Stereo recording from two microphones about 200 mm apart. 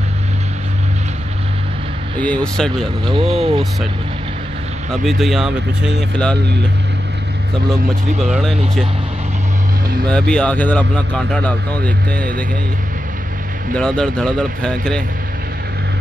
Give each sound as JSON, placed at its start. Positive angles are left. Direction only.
{"t": 2.1, "sound": "speech", "side_deg": 5}
{"t": 3.3, "sound": "speech", "side_deg": -30}
{"t": 5.0, "sound": "speech", "side_deg": 0}
{"t": 8.2, "sound": "speech", "side_deg": 0}
{"t": 10.0, "sound": "speech", "side_deg": 5}
{"t": 13.7, "sound": "speech", "side_deg": 5}